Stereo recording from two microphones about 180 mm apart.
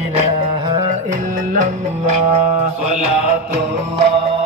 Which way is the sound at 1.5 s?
40° right (ahead or behind).